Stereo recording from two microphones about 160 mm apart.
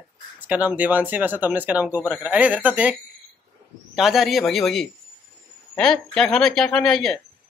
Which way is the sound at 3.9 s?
Centre (ahead or behind).